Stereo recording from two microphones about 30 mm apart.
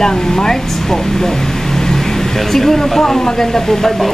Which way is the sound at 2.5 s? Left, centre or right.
Centre.